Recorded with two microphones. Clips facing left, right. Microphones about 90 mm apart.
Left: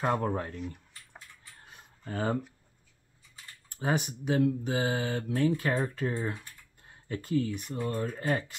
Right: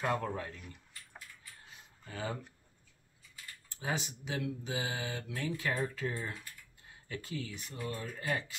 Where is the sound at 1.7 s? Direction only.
45° left (ahead or behind).